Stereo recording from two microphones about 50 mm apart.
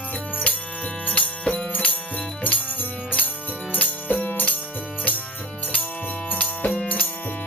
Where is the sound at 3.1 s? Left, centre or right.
Left.